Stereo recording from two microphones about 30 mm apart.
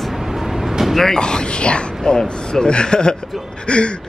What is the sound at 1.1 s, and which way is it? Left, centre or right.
Speech, left.